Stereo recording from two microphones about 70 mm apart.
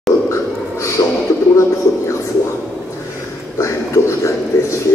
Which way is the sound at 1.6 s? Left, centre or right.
Left.